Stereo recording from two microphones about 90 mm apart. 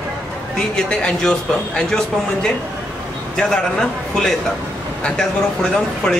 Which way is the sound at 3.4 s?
5° left (ahead or behind).